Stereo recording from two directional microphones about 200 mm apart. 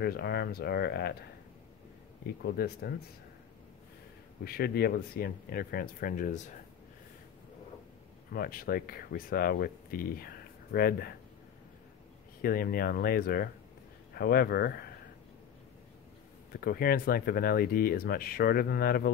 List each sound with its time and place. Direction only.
0.0 s speech: 55° left (ahead or behind)
2.2 s speech: 50° left (ahead or behind)
4.5 s speech: 50° left (ahead or behind)
8.3 s speech: 45° left (ahead or behind)
12.4 s speech: 50° left (ahead or behind)
16.5 s speech: 50° left (ahead or behind)